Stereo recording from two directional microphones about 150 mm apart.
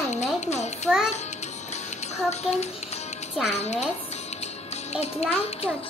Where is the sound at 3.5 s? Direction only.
45° left (ahead or behind).